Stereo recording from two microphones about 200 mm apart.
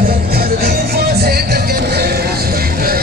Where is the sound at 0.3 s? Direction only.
50° right (ahead or behind).